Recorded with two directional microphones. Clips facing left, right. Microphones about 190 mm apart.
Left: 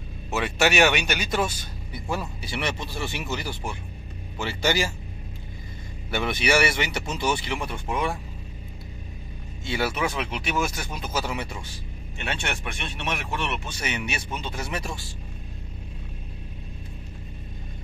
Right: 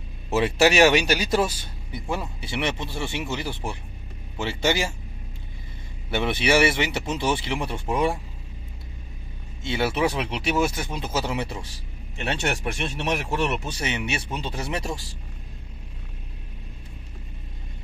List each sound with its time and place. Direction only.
0.3 s speech: 30° right (ahead or behind)
6.0 s speech: 25° right (ahead or behind)
9.6 s speech: 25° right (ahead or behind); by 13.8 s 40° right (ahead or behind)
13.8 s speech: 25° right (ahead or behind)